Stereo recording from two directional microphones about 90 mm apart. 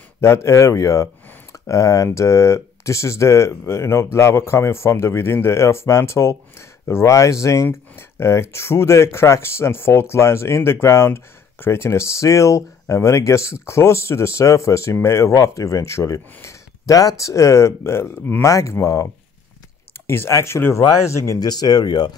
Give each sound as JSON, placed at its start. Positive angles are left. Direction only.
{"t": 0.2, "sound": "speech", "side_deg": 30}
{"t": 16.3, "sound": "a sound", "side_deg": 35}
{"t": 17.2, "sound": "speech", "side_deg": 35}
{"t": 20.1, "sound": "speech", "side_deg": 30}
{"t": 21.4, "sound": "speech", "side_deg": 50}